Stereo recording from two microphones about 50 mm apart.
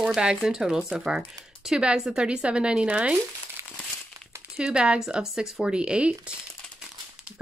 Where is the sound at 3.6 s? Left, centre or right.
Right.